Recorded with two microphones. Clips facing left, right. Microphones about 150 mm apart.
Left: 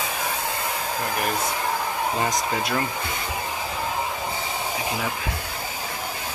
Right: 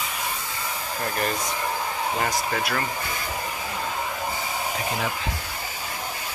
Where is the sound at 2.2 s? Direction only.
20° left (ahead or behind).